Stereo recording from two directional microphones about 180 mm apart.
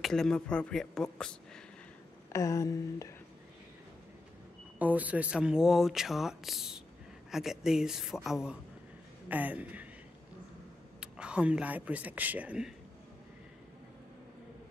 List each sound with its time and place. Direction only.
0.0 s speech: 5° left (ahead or behind)
2.3 s a sound: 15° left (ahead or behind)
4.7 s speech: 10° right (ahead or behind)
11.0 s speech: 5° right (ahead or behind)